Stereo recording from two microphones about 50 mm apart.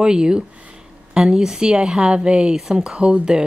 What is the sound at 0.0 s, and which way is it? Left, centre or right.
A woman's voice, centre.